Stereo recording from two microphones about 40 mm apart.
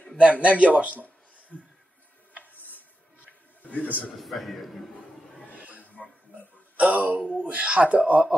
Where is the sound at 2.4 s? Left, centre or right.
Left.